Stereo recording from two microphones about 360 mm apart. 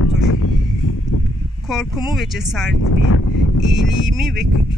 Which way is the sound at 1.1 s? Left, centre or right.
Left.